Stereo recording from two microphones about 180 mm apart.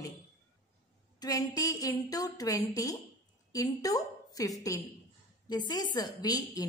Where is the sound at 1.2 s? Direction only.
20° left (ahead or behind).